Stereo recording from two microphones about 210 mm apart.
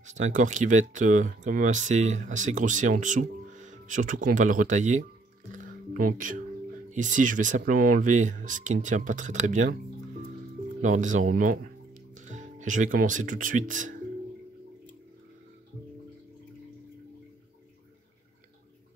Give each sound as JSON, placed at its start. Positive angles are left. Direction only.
{"t": 0.0, "sound": "speech", "side_deg": -35}
{"t": 5.5, "sound": "music", "side_deg": -40}
{"t": 6.9, "sound": "speech", "side_deg": -35}
{"t": 10.8, "sound": "speech", "side_deg": -35}